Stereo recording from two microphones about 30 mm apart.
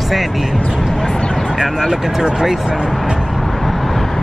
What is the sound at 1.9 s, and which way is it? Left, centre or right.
Speech, centre.